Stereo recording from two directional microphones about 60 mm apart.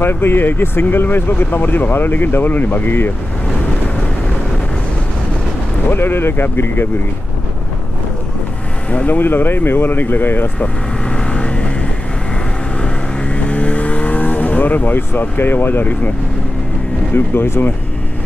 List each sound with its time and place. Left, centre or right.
0.0 s speech: left
5.9 s speech: left
8.9 s speech: left
10.6 s vehicle: centre
12.8 s vehicle: centre
17.1 s speech: left